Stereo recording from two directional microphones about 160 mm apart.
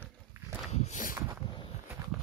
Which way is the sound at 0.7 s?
45° left (ahead or behind).